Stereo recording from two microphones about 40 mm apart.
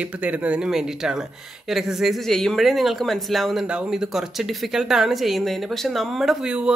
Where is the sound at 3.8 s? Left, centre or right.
Centre.